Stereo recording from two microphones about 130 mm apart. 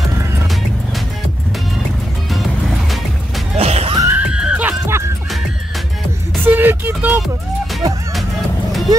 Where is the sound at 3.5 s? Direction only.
50° right (ahead or behind).